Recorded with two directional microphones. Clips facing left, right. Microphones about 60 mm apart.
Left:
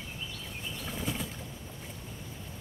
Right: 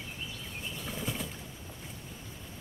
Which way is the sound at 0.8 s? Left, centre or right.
Centre.